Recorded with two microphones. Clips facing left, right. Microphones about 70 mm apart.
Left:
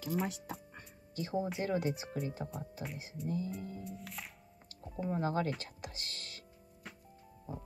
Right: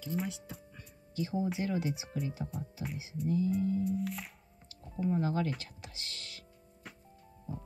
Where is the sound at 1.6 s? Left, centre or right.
Left.